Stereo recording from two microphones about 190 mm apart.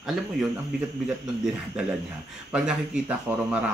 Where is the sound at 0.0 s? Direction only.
Centre (ahead or behind).